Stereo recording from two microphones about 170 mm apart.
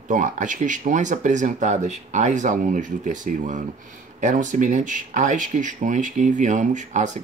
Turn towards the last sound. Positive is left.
turn(degrees=-45)  # may be behind; listen again after turning